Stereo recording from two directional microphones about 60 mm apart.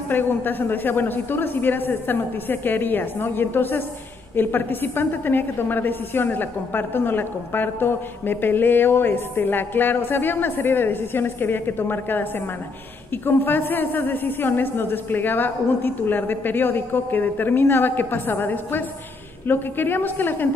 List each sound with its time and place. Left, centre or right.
0.1 s a woman's voice: left